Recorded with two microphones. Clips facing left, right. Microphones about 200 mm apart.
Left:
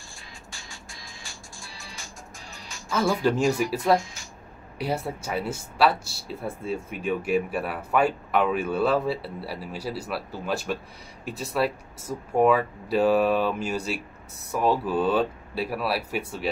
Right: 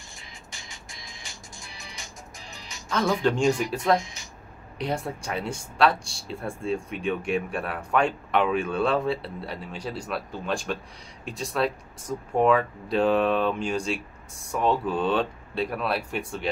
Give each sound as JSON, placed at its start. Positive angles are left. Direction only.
{"t": 0.1, "sound": "music", "side_deg": -20}
{"t": 3.2, "sound": "speech", "side_deg": 5}
{"t": 3.9, "sound": "speech", "side_deg": -20}
{"t": 4.7, "sound": "speech", "side_deg": 5}